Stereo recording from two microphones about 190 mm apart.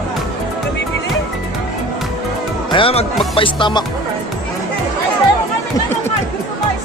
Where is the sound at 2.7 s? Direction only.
30° left (ahead or behind).